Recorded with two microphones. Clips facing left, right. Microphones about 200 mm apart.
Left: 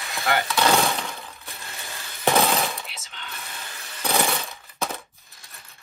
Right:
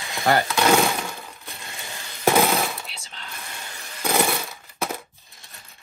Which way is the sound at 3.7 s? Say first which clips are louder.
Right 1 dB; 15° right (ahead or behind).